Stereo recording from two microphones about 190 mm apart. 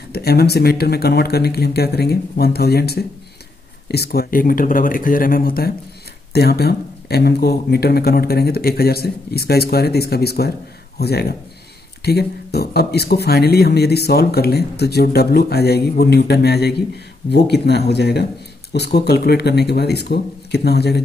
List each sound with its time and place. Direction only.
0.1 s speech: 55° left (ahead or behind)